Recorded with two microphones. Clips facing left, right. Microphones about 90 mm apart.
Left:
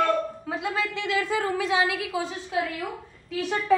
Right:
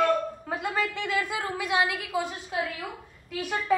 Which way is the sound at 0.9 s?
15° right (ahead or behind).